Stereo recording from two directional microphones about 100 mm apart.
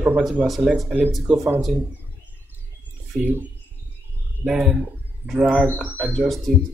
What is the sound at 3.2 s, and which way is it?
Speech, 15° right (ahead or behind).